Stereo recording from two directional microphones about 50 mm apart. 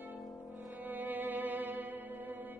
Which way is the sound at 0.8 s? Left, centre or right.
Right.